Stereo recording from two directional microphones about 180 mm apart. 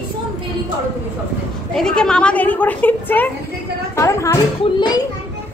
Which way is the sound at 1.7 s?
5° left (ahead or behind).